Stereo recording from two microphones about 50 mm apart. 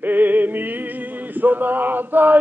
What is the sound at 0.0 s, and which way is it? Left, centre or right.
Music, right.